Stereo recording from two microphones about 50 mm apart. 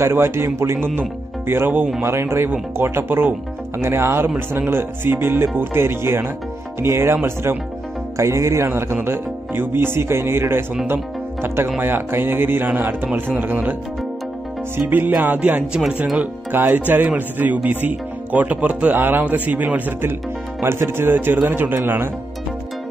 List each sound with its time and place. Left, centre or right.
0.0 s speech: right
2.0 s speech: right
8.2 s speech: right
8.6 s speech: right
8.9 s speech: right
14.9 s speech: right
18.9 s speech: right
19.3 s speech: right
20.6 s speech: right